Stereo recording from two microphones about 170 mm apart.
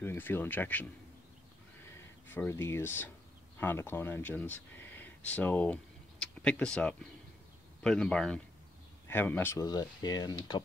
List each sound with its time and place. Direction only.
0.0 s speech: 15° left (ahead or behind)
2.3 s speech: 15° left (ahead or behind)